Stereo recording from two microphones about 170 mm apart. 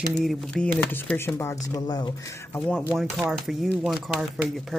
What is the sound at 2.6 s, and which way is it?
Speech, 5° left (ahead or behind).